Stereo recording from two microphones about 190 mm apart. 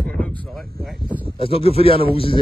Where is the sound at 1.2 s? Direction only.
30° left (ahead or behind).